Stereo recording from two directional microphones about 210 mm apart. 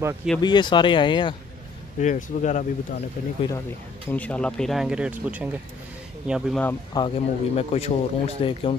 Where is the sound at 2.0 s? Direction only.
35° left (ahead or behind).